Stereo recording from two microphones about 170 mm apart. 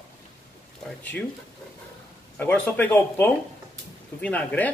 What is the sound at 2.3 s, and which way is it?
A man's voice, 10° left (ahead or behind).